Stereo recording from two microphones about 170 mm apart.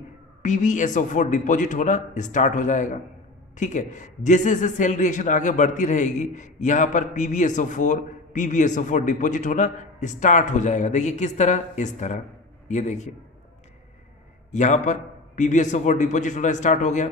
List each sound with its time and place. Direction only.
0.4 s a man's voice: 45° left (ahead or behind)
14.5 s a man's voice: 45° left (ahead or behind)